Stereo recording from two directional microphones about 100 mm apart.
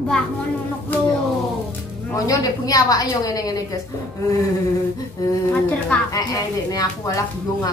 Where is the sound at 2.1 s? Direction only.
35° left (ahead or behind).